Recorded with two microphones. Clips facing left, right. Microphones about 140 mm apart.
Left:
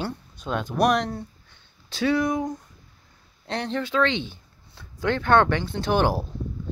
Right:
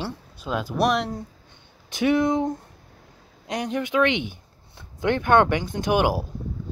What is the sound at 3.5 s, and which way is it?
Speech, 15° right (ahead or behind).